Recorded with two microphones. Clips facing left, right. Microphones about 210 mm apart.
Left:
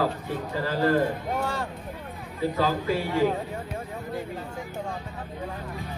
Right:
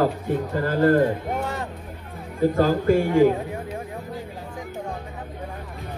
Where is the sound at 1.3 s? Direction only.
20° right (ahead or behind).